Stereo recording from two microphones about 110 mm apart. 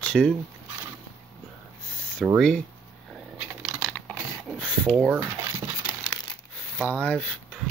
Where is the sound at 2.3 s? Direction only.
5° left (ahead or behind).